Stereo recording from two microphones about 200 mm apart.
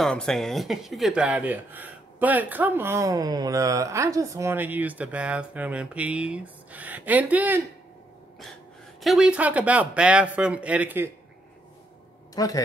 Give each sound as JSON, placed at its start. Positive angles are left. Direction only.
{"t": 0.0, "sound": "speech", "side_deg": 5}
{"t": 9.0, "sound": "speech", "side_deg": -5}
{"t": 12.4, "sound": "a man's voice", "side_deg": 20}